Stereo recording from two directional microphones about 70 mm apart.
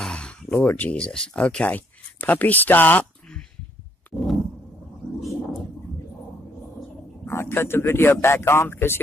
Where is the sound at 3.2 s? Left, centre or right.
Centre.